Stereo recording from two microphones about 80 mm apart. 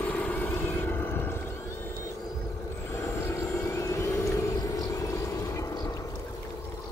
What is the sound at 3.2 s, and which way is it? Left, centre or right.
Vehicle, left.